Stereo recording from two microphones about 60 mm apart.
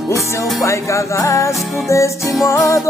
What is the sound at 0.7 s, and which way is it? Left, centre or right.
Music, left.